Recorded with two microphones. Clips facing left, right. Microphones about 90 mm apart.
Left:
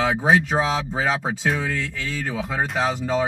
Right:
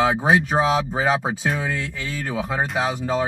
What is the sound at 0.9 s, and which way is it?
Speech, 15° right (ahead or behind).